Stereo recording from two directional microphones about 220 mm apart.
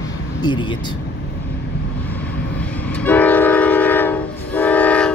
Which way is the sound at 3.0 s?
5° left (ahead or behind).